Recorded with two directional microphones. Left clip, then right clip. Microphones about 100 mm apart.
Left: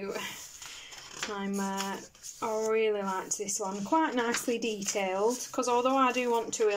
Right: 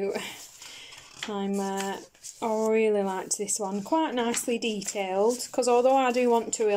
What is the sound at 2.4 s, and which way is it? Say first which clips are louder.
Speech: right 4 dB; 55° right (ahead or behind).